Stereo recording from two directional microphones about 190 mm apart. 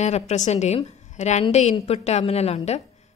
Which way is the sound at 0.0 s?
35° left (ahead or behind).